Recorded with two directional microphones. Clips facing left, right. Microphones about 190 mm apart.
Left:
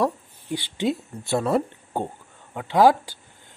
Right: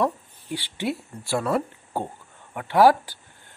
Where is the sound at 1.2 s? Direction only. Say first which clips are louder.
Left 2 dB; 20° left (ahead or behind).